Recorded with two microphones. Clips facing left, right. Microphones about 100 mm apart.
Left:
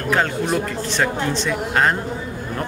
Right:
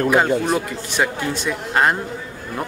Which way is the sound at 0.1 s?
10° right (ahead or behind).